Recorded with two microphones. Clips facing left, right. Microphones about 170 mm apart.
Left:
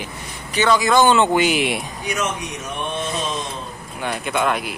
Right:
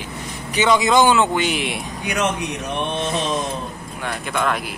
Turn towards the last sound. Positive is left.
turn(degrees=5)  # may be behind; listen again after turning